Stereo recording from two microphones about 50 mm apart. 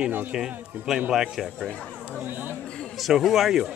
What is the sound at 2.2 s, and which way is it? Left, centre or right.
Chatter, right.